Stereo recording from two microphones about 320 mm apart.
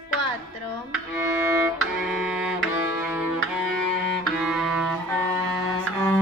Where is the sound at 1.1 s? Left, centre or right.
Centre.